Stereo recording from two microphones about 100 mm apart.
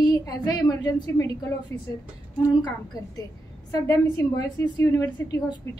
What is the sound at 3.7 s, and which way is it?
A woman's voice, 35° left (ahead or behind).